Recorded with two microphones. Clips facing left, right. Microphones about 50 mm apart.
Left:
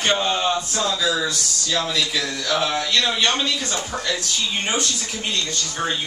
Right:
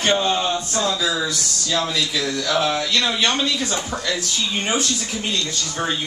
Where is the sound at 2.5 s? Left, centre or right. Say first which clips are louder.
Right 1 dB; centre.